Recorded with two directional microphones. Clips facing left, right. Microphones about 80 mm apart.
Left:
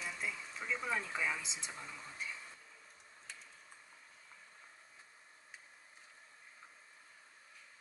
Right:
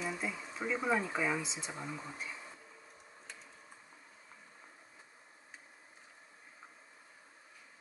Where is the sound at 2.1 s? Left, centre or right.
Centre.